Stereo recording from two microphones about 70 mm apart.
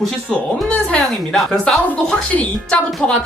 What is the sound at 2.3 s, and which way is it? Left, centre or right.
Speech, centre.